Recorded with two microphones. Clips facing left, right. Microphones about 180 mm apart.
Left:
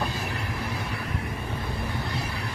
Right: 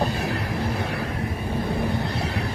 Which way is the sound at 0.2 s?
70° right (ahead or behind).